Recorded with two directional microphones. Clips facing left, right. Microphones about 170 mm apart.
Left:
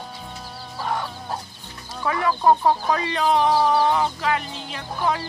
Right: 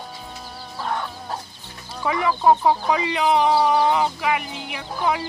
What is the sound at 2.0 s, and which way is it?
Speech, 10° right (ahead or behind).